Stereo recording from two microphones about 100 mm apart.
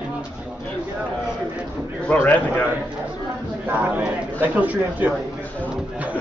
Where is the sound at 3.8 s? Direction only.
15° right (ahead or behind).